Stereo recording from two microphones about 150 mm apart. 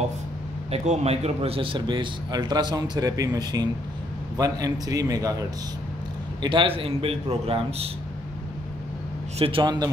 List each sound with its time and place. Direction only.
0.7 s speech: 40° right (ahead or behind); by 5.4 s 25° right (ahead or behind)
6.4 s a man's voice: 35° right (ahead or behind)
9.4 s a man's voice: 35° right (ahead or behind)